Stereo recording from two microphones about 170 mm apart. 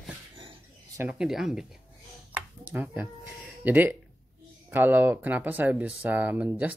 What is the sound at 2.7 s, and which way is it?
Speech, 10° right (ahead or behind).